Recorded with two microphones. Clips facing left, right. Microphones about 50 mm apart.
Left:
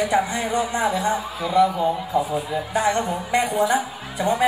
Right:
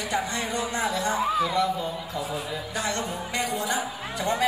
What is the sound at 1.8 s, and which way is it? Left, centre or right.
A woman's voice, left.